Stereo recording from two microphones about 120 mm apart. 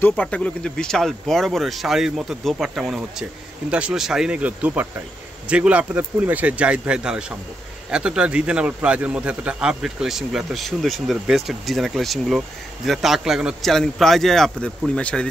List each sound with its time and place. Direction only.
0.2 s a man's voice: 10° left (ahead or behind)